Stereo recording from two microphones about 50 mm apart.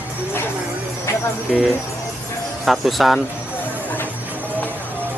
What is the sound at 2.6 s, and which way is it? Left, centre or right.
Speech, centre.